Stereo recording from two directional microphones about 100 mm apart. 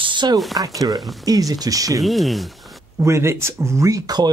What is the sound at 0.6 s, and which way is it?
Speech, 35° right (ahead or behind).